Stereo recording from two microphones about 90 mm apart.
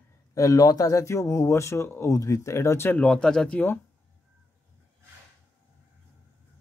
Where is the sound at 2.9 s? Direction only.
10° left (ahead or behind).